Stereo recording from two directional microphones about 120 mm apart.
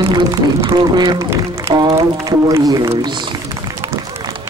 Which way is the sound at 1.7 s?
40° right (ahead or behind).